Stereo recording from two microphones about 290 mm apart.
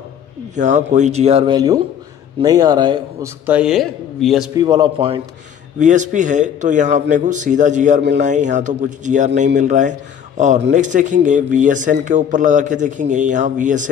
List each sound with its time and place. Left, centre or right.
0.6 s a man's voice: right; by 4.5 s centre
4.6 s a man's voice: centre